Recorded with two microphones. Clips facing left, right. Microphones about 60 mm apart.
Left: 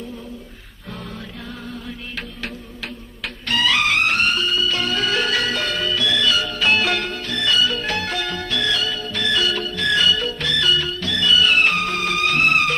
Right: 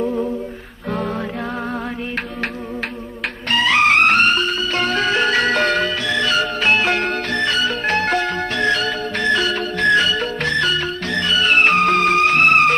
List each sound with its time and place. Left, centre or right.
3.4 s music: right
5.5 s music: right
5.9 s music: right
7.1 s music: right
8.8 s music: right
11.8 s music: right